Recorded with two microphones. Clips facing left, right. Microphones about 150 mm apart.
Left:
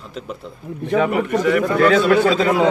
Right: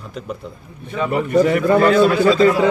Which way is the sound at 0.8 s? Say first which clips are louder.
Left 6 dB; 80° left.